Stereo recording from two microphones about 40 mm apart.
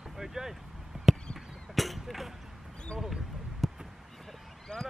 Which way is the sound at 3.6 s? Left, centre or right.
Centre.